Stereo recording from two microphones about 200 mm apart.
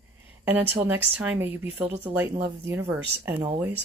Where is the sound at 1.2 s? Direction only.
10° right (ahead or behind).